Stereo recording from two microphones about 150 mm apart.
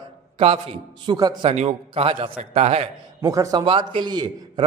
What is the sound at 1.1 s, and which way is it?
Speech, 25° right (ahead or behind).